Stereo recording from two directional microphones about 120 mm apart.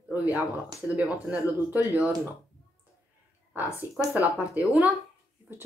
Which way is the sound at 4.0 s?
10° right (ahead or behind).